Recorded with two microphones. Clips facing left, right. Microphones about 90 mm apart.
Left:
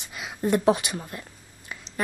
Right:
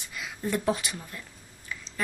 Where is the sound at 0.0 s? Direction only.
20° left (ahead or behind).